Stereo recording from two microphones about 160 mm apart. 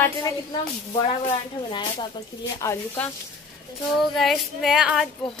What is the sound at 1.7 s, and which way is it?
Speech, 30° left (ahead or behind).